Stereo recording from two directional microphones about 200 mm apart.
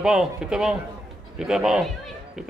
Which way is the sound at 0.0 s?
5° right (ahead or behind).